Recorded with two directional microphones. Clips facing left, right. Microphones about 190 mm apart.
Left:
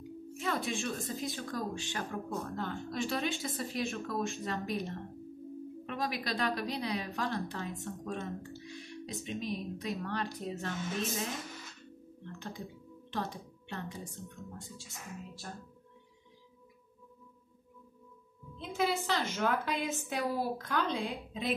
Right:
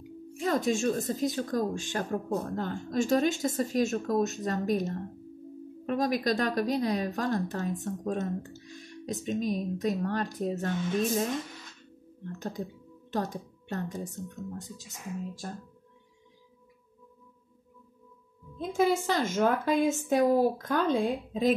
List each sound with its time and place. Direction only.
0.4 s a woman's voice: 40° right (ahead or behind)
12.3 s a woman's voice: 45° right (ahead or behind)
18.6 s a woman's voice: 45° right (ahead or behind)